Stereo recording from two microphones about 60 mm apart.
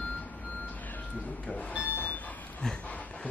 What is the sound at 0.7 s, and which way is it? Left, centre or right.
Vehicle, left.